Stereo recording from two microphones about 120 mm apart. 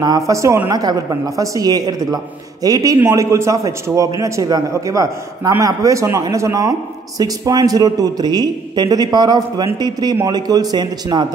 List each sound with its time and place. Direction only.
0.0 s a man's voice: 30° right (ahead or behind)